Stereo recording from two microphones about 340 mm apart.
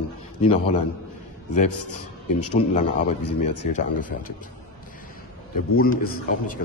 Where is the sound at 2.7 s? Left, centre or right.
Left.